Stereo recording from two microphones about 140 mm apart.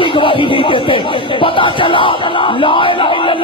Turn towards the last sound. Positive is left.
turn(degrees=35)  # may be behind; listen again after turning